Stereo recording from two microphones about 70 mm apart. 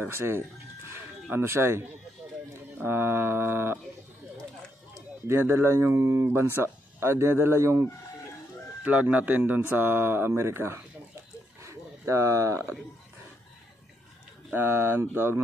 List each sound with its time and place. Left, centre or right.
0.0 s speech: right
5.3 s speech: right
8.8 s speech: right
14.5 s speech: right